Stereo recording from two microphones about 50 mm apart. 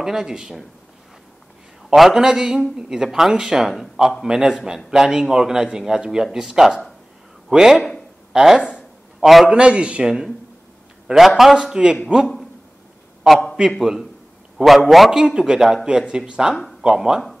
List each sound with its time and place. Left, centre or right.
0.0 s a man's voice: centre
2.0 s a man's voice: centre
9.5 s a man's voice: centre
11.1 s a man's voice: centre
11.5 s a man's voice: centre
13.6 s a man's voice: centre
15.0 s a man's voice: centre